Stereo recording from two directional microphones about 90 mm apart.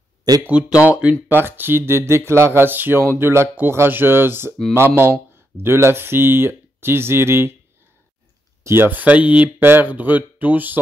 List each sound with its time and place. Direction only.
0.5 s speech: 10° right (ahead or behind)
1.3 s speech: 25° right (ahead or behind)
8.6 s speech: 25° right (ahead or behind)